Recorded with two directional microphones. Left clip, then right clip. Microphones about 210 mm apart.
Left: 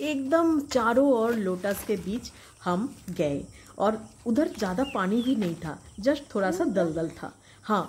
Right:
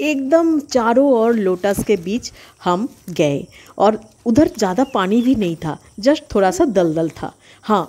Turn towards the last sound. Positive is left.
turn(degrees=-35)  # may be behind; listen again after turning